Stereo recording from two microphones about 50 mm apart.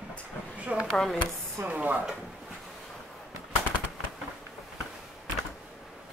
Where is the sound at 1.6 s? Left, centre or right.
Right.